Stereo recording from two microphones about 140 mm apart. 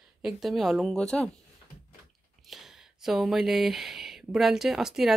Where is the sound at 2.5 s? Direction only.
Centre (ahead or behind).